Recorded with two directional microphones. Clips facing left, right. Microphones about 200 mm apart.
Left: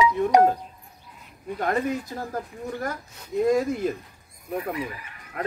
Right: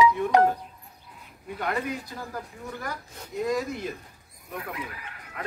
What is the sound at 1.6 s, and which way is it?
Speech, 45° left (ahead or behind).